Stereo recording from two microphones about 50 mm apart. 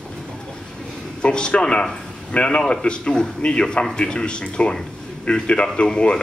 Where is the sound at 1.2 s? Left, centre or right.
Centre.